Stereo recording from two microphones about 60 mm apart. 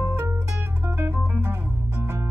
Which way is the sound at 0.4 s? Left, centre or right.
Right.